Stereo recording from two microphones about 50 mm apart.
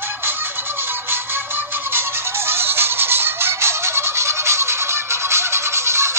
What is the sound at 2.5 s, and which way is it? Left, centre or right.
Music, right.